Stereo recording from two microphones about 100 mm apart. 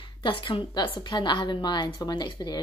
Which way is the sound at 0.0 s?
55° left (ahead or behind).